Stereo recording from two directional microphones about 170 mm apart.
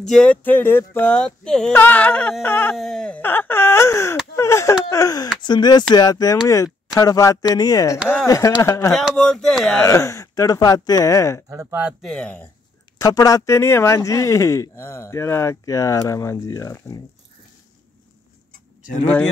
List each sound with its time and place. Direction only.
0.0 s speech: 5° left (ahead or behind)
8.9 s speech: 5° left (ahead or behind)
9.8 s speech: 15° left (ahead or behind)
11.4 s speech: 15° right (ahead or behind)
12.0 s speech: 5° left (ahead or behind)
13.0 s speech: 20° left (ahead or behind)